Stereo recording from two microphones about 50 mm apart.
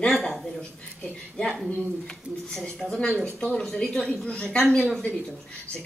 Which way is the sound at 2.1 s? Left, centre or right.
Centre.